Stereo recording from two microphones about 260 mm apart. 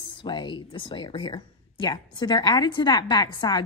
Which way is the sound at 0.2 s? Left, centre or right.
Centre.